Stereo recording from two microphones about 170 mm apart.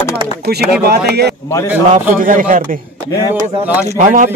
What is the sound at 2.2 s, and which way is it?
Speech, 55° right (ahead or behind).